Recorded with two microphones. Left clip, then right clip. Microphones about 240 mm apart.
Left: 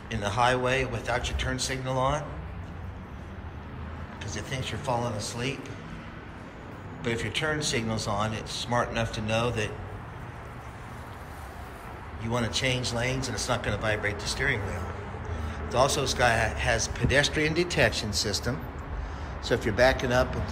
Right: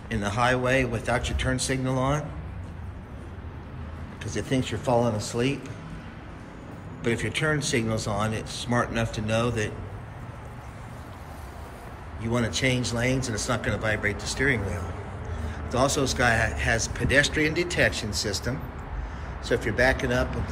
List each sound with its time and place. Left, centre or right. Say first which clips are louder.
0.1 s a man's voice: right 1 dB; centre
4.2 s a man's voice: right 7 dB; centre
7.0 s a man's voice: right 3 dB; centre
12.2 s a man's voice: right 2 dB; centre